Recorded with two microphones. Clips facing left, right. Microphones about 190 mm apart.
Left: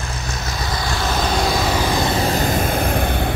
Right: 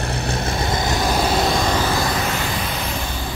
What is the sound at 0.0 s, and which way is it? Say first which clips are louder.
Vehicle: right 5 dB; 30° right (ahead or behind).